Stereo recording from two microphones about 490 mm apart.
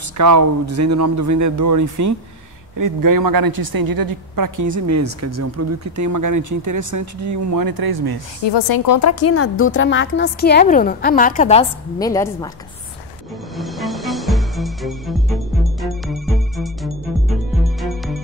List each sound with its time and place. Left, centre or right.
0.2 s a woman's voice: right
8.5 s a woman's voice: left; by 12.4 s centre
13.6 s music: centre